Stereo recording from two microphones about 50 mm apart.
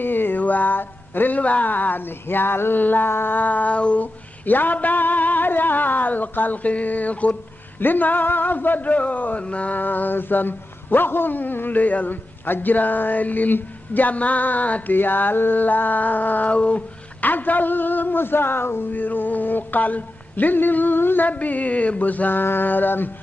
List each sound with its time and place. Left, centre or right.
0.0 s a sound: left
7.8 s speech: left
17.2 s speech: left